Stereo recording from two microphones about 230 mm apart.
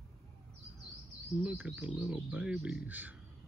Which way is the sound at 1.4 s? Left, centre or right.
Centre.